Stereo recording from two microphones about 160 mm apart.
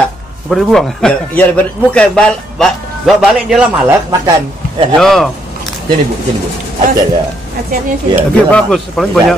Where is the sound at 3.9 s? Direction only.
25° right (ahead or behind).